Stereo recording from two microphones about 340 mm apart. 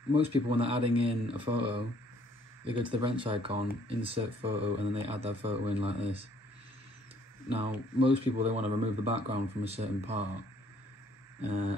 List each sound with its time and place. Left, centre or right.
0.1 s speech: centre
7.5 s speech: centre
11.4 s a sound: centre